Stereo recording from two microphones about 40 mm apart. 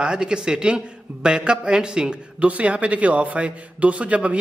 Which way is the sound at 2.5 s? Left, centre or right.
Right.